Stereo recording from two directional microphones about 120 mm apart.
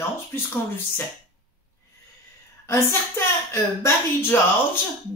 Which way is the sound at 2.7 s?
20° left (ahead or behind).